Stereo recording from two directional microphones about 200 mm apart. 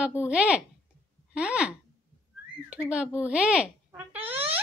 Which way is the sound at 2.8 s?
5° right (ahead or behind).